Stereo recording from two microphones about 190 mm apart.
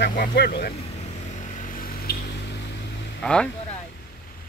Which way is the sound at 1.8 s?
55° left (ahead or behind).